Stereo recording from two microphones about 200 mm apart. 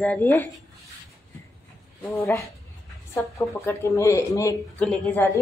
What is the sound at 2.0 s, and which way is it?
Speech, 15° left (ahead or behind).